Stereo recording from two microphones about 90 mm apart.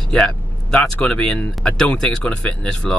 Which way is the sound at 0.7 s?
10° left (ahead or behind).